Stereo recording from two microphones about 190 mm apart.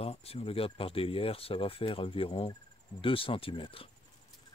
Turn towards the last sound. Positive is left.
turn(degrees=30)  # may be behind; listen again after turning